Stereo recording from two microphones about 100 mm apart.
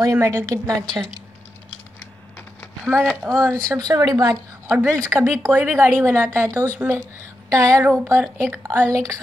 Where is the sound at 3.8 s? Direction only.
35° right (ahead or behind).